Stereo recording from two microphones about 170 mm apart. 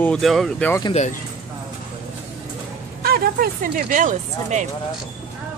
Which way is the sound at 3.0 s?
60° right (ahead or behind).